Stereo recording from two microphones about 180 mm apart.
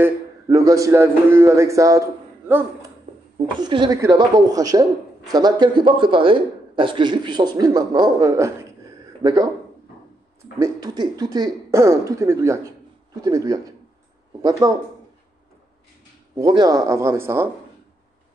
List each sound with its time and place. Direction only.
0.5 s a man's voice: 20° right (ahead or behind)
3.6 s a man's voice: 25° right (ahead or behind)
10.6 s a man's voice: 20° right (ahead or behind)
16.3 s a man's voice: 20° right (ahead or behind)